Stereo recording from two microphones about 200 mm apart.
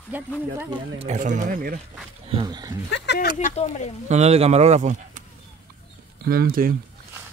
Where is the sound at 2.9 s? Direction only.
55° left (ahead or behind).